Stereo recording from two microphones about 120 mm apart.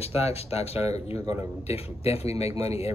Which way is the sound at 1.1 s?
30° right (ahead or behind).